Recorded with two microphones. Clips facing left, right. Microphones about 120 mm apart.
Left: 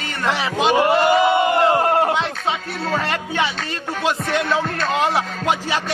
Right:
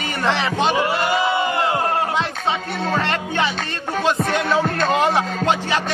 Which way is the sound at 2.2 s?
Centre (ahead or behind).